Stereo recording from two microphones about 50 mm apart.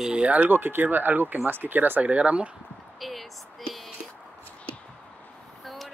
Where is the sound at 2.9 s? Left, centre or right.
Centre.